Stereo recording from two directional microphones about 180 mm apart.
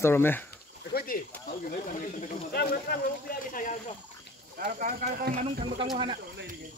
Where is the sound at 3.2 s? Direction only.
50° left (ahead or behind).